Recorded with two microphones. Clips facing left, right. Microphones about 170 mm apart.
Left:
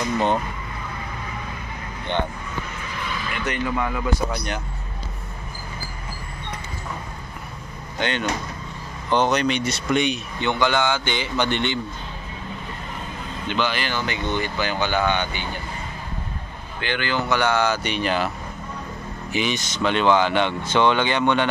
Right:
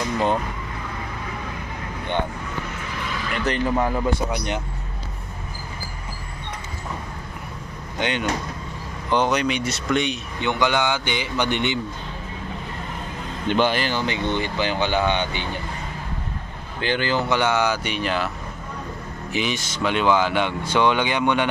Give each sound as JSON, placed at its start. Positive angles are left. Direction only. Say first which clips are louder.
{"t": 3.4, "sound": "speech", "louder": "right 3 dB", "side_deg": -35}
{"t": 8.0, "sound": "speech", "louder": "right 1 dB", "side_deg": -15}
{"t": 10.4, "sound": "speech", "louder": "even", "side_deg": -15}
{"t": 13.5, "sound": "speech", "louder": "right 4 dB", "side_deg": -50}
{"t": 13.8, "sound": "speech", "louder": "right 2 dB", "side_deg": -25}
{"t": 16.8, "sound": "speech", "louder": "right 2 dB", "side_deg": -35}
{"t": 17.4, "sound": "speech", "louder": "even", "side_deg": -15}
{"t": 19.3, "sound": "speech", "louder": "left 1 dB", "side_deg": -5}